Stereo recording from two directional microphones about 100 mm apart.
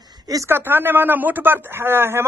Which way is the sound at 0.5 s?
20° right (ahead or behind).